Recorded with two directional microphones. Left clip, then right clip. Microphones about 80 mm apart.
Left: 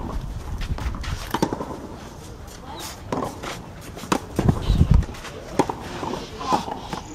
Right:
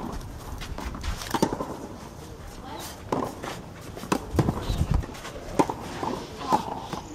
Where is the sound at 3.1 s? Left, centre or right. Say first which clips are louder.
Left 1 dB; centre.